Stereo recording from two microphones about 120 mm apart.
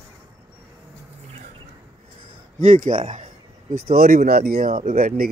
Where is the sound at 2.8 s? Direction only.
90° right.